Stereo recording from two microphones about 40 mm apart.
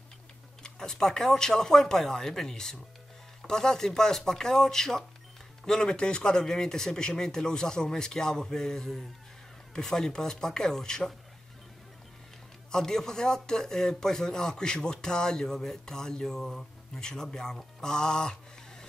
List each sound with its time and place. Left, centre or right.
0.7 s speech: centre
12.7 s speech: centre
17.6 s music: centre